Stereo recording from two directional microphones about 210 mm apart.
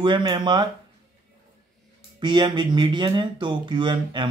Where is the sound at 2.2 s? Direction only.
20° right (ahead or behind).